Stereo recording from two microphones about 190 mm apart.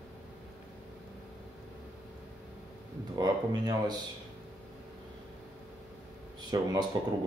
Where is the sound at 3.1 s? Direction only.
20° right (ahead or behind).